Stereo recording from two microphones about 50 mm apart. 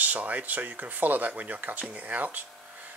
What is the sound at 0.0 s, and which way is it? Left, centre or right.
Speech, right.